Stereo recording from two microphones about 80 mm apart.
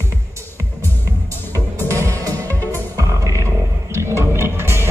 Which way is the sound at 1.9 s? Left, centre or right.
Right.